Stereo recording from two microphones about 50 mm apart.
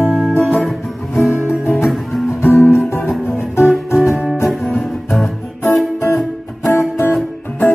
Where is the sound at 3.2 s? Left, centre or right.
Left.